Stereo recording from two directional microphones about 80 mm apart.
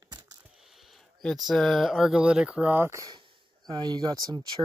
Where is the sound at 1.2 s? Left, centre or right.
Centre.